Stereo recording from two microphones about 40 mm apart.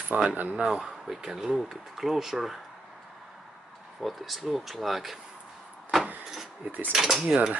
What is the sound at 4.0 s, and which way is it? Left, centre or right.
Speech, centre.